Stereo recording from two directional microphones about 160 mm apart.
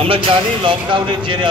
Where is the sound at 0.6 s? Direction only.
30° right (ahead or behind).